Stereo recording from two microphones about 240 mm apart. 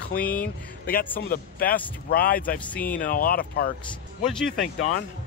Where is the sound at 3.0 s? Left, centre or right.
Left.